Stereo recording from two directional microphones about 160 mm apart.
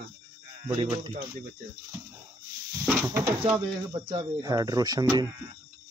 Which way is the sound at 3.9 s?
30° right (ahead or behind).